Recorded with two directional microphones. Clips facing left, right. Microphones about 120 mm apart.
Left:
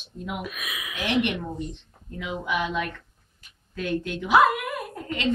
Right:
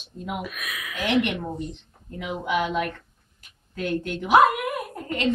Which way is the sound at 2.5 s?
50° right (ahead or behind).